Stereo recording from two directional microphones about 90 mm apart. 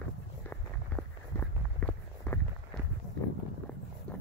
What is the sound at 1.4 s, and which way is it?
Walk, 20° left (ahead or behind).